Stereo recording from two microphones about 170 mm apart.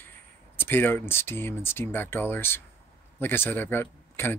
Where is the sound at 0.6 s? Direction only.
10° left (ahead or behind).